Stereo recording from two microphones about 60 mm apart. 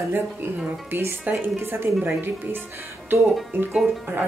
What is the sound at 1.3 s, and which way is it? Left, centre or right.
Speech, right.